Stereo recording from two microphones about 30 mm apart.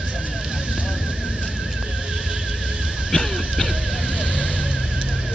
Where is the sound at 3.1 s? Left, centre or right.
Centre.